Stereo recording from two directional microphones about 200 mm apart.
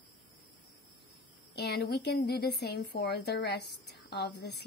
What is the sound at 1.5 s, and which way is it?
A woman's voice, 55° left (ahead or behind).